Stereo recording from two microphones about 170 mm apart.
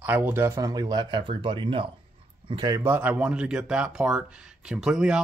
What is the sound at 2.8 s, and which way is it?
Speech, 10° right (ahead or behind).